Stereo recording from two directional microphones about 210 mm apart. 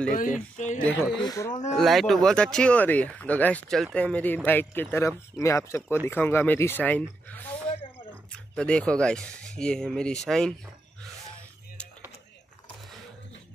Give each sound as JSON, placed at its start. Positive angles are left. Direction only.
{"t": 0.1, "sound": "speech", "side_deg": 35}
{"t": 1.1, "sound": "speech", "side_deg": 20}
{"t": 1.8, "sound": "speech", "side_deg": 0}